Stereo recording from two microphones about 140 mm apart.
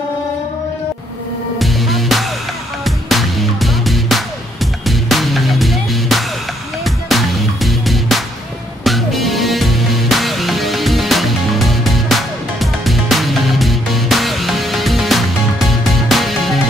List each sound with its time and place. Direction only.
1.6 s music: centre (ahead or behind)